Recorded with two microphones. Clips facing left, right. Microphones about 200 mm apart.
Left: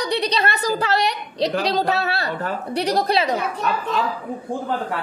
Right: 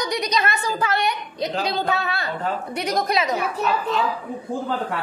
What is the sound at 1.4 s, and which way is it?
Speech, 75° left (ahead or behind).